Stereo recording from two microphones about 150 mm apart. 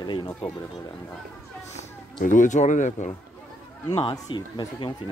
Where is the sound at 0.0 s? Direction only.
30° left (ahead or behind).